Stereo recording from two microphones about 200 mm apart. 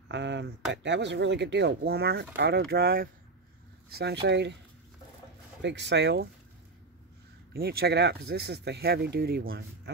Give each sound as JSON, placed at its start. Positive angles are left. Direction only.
{"t": 0.1, "sound": "speech", "side_deg": -60}
{"t": 5.6, "sound": "speech", "side_deg": -60}
{"t": 7.5, "sound": "speech", "side_deg": -50}